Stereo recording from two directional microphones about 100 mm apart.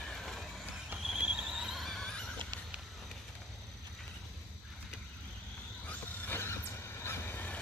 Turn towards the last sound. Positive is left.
turn(degrees=15)  # may be behind; listen again after turning